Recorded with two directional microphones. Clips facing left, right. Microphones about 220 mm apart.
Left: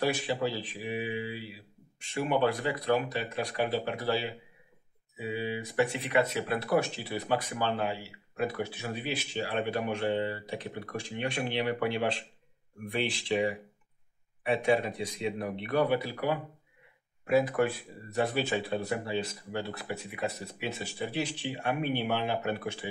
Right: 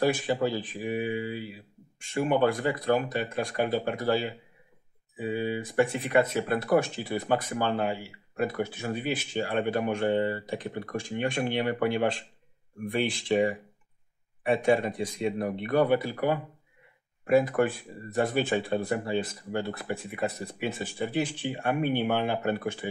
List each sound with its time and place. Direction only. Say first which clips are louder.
0.0 s speech: right 4 dB; 50° right (ahead or behind)